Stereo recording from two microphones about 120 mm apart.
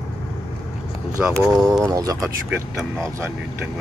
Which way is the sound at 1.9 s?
30° right (ahead or behind).